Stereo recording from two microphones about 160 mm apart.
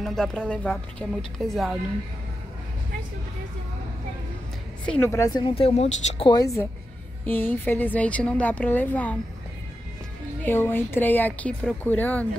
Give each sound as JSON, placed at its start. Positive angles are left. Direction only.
{"t": 0.0, "sound": "a woman's voice", "side_deg": 0}
{"t": 4.8, "sound": "speech", "side_deg": 10}
{"t": 5.4, "sound": "speech", "side_deg": 35}
{"t": 6.2, "sound": "a woman's voice", "side_deg": 20}
{"t": 10.4, "sound": "speech", "side_deg": 15}